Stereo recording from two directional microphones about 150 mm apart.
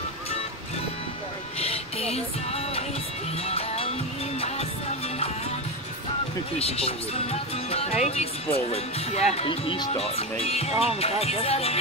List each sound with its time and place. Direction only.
1.6 s music: 40° left (ahead or behind)
6.6 s speech: 40° left (ahead or behind)